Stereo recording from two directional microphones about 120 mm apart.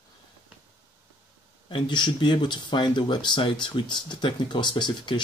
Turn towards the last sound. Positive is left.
turn(degrees=40)  # may be behind; listen again after turning